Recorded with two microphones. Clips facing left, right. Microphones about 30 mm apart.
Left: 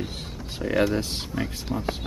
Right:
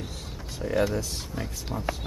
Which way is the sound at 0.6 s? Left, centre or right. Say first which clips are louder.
Left 2 dB; left.